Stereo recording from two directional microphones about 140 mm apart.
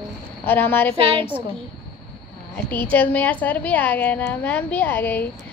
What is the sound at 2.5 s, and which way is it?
A woman's voice, 10° left (ahead or behind).